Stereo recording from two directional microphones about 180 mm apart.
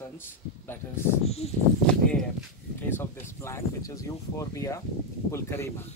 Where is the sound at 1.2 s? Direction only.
35° left (ahead or behind).